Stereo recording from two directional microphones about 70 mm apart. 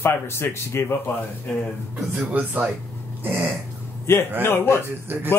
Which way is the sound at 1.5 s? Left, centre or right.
Centre.